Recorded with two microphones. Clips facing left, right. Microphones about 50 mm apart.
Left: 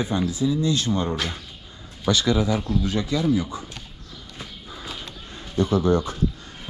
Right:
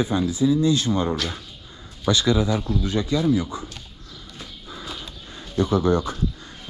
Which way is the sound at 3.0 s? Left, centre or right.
Left.